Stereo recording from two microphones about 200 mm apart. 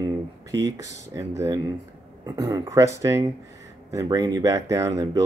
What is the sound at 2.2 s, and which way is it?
Speech, 20° right (ahead or behind).